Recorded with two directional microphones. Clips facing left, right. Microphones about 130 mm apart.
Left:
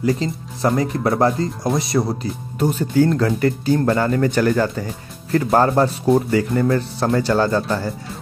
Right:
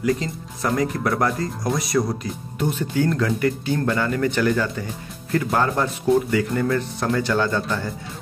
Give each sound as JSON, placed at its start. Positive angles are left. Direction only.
{"t": 0.0, "sound": "speech", "side_deg": 30}
{"t": 2.6, "sound": "speech", "side_deg": 35}